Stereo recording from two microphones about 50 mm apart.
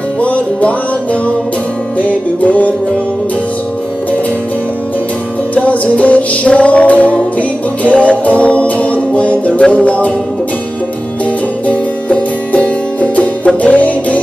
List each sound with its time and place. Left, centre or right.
0.2 s music: left
2.0 s music: left
5.5 s music: left
11.6 s music: left